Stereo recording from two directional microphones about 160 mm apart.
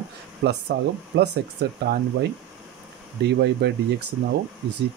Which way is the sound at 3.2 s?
90° right.